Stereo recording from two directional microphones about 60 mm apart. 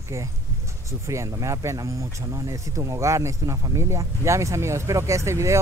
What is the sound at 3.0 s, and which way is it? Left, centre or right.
Speech, right.